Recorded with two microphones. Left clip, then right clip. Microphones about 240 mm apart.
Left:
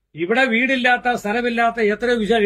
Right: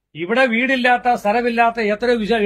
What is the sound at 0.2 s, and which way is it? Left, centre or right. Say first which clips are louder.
A man's voice: right 1 dB; centre.